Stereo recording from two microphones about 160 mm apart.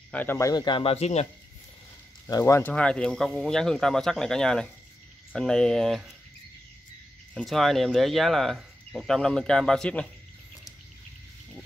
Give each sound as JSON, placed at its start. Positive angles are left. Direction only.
{"t": 0.1, "sound": "speech", "side_deg": 10}
{"t": 2.2, "sound": "speech", "side_deg": 20}
{"t": 2.7, "sound": "speech", "side_deg": 5}
{"t": 7.3, "sound": "speech", "side_deg": 0}